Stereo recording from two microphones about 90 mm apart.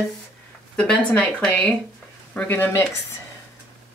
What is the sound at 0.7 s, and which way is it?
Speech, 10° left (ahead or behind).